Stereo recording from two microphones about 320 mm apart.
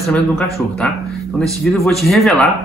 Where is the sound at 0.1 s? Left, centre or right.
Centre.